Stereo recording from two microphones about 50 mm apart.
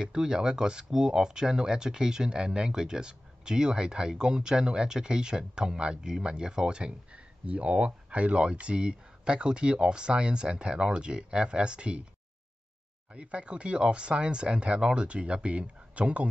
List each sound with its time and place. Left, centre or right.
0.0 s speech: centre
13.1 s speech: right